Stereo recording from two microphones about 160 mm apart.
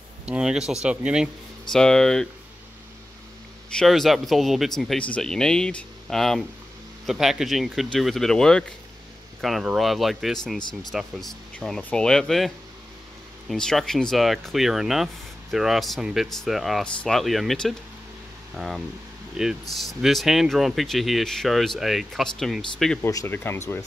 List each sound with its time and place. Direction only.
0.2 s speech: 5° right (ahead or behind)
3.7 s speech: centre (ahead or behind)
19.4 s speech: 5° right (ahead or behind)
23.0 s speech: 15° left (ahead or behind)